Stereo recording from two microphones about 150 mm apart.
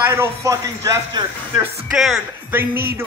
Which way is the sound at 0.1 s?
20° right (ahead or behind).